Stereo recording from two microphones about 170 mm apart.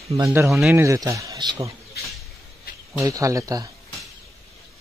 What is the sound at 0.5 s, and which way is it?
Speech, centre (ahead or behind).